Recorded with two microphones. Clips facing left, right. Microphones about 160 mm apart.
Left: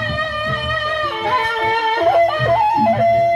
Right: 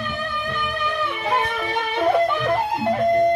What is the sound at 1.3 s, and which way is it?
Music, 65° left (ahead or behind).